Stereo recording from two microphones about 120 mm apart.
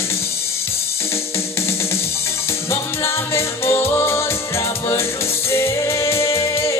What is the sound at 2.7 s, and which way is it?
Music, 20° left (ahead or behind).